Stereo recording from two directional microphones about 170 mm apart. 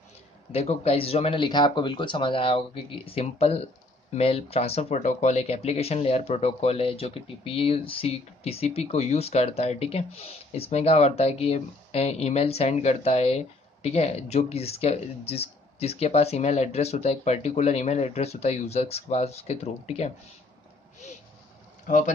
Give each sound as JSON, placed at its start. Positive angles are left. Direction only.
{"t": 0.5, "sound": "speech", "side_deg": 35}
{"t": 21.8, "sound": "speech", "side_deg": 50}